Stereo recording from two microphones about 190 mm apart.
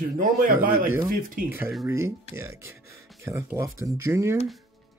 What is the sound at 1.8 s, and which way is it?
A man's voice, 15° right (ahead or behind).